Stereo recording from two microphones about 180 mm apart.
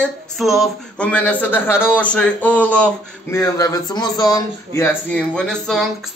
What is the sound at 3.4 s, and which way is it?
Speech, 20° left (ahead or behind).